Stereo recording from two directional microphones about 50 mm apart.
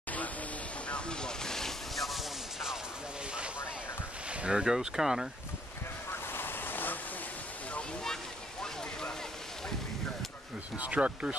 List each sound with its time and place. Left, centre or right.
0.8 s a sound: centre
4.3 s speech: right
6.3 s waves: left
10.8 s speech: right